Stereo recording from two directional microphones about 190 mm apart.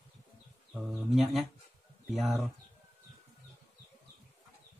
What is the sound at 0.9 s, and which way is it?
Speech, centre (ahead or behind).